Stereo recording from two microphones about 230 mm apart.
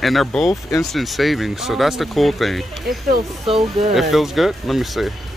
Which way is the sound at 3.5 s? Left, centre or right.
Right.